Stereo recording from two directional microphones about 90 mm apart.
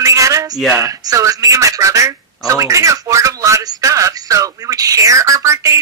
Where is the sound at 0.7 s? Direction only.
35° right (ahead or behind).